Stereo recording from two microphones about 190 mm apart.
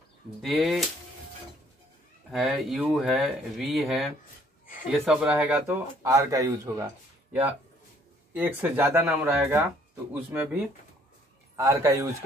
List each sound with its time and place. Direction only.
0.4 s speech: centre (ahead or behind)
2.3 s speech: centre (ahead or behind)
6.0 s speech: 15° right (ahead or behind)
8.3 s speech: 10° right (ahead or behind)